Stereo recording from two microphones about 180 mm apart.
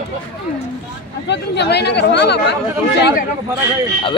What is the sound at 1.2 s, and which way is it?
Speech, 70° left (ahead or behind).